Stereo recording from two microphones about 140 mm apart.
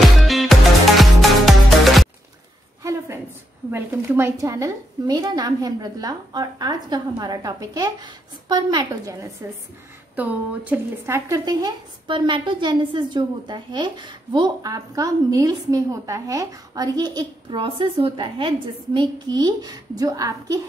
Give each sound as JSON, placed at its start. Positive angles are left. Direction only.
{"t": 0.2, "sound": "music", "side_deg": 0}
{"t": 2.8, "sound": "a sound", "side_deg": -20}
{"t": 3.7, "sound": "a woman's voice", "side_deg": -15}
{"t": 9.4, "sound": "a woman's voice", "side_deg": -25}
{"t": 10.1, "sound": "a woman's voice", "side_deg": -10}